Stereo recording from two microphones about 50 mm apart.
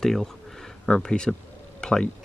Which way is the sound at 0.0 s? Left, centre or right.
Centre.